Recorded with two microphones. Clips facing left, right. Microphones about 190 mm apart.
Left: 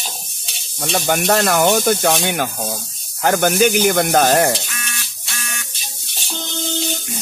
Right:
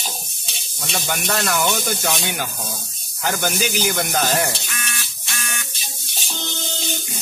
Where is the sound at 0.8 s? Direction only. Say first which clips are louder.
Left 8 dB; 50° left (ahead or behind).